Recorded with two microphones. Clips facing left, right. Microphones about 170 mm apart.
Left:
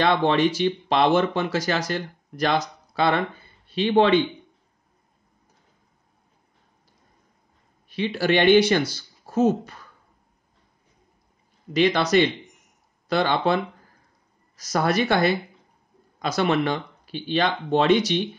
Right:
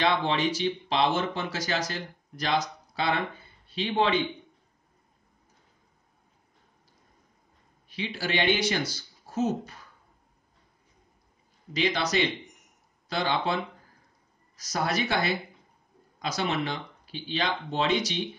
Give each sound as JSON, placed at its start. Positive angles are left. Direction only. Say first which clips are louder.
{"t": 0.0, "sound": "speech", "louder": "left 6 dB", "side_deg": 60}
{"t": 7.9, "sound": "speech", "louder": "left 9 dB", "side_deg": 60}
{"t": 11.7, "sound": "speech", "louder": "left 8 dB", "side_deg": 60}
{"t": 14.6, "sound": "speech", "louder": "left 6 dB", "side_deg": 60}